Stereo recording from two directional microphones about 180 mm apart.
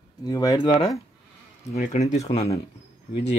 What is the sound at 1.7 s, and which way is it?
Speech, 40° left (ahead or behind).